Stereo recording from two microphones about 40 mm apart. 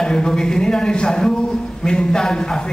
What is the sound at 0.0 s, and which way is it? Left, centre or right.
A man's voice, centre.